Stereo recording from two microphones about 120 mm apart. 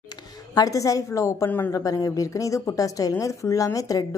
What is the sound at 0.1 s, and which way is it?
A woman's voice, 30° left (ahead or behind).